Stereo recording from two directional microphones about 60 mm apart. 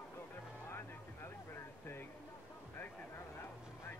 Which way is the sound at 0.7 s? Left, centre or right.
Left.